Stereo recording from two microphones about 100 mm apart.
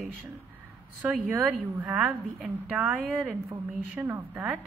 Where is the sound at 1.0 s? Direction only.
15° right (ahead or behind).